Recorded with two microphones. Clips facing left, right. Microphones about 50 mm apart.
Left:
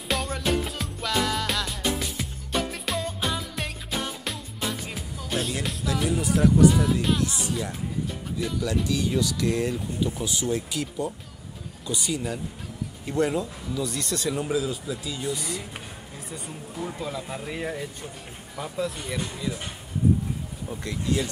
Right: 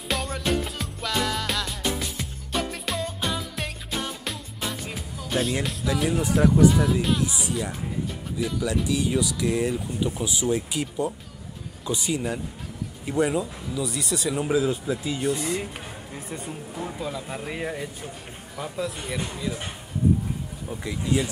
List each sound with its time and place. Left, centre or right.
0.1 s music: centre
6.0 s speech: right
6.6 s speech: centre
14.5 s speech: right
16.7 s speech: centre